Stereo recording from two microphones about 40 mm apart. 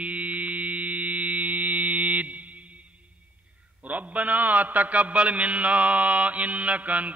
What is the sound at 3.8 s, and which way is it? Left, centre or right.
A man's voice, right.